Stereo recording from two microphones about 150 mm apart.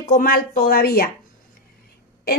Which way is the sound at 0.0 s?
70° left (ahead or behind).